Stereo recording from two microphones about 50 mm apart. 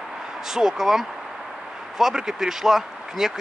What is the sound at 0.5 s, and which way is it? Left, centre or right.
Speech, centre.